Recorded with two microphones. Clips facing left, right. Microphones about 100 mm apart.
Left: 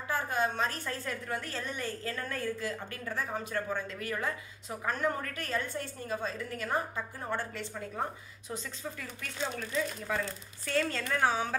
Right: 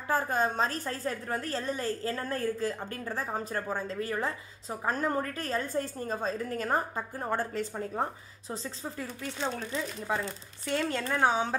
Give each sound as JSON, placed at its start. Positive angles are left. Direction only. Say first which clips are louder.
{"t": 0.1, "sound": "a woman's voice", "louder": "right 3 dB", "side_deg": -35}